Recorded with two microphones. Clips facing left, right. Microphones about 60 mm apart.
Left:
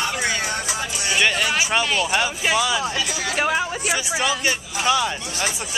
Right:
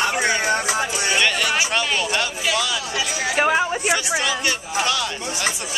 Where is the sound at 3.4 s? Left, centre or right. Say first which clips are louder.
Right 4 dB; centre.